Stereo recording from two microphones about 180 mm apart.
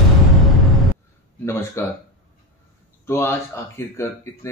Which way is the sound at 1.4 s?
15° left (ahead or behind).